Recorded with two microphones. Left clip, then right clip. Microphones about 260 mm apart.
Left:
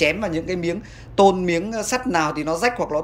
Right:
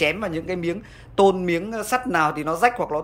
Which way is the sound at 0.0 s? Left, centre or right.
Centre.